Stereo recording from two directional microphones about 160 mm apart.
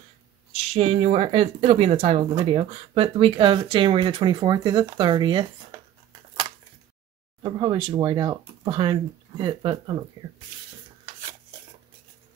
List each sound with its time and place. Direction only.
0.5 s speech: 40° right (ahead or behind)
7.4 s speech: 30° right (ahead or behind)